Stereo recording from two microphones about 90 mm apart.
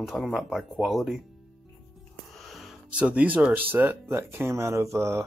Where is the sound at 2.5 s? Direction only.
Centre (ahead or behind).